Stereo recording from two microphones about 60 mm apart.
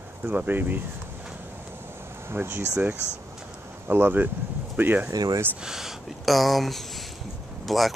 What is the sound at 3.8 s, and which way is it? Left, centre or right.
Speech, right.